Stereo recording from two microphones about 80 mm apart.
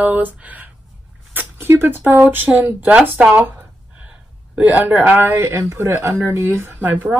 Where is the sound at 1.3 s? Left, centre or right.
Right.